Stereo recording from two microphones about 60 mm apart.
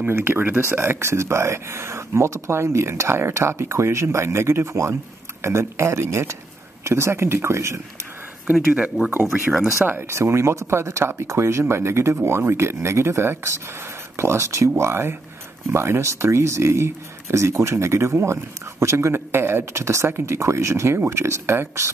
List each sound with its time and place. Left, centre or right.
0.0 s speech: right
9.2 s speech: centre
10.0 s speech: right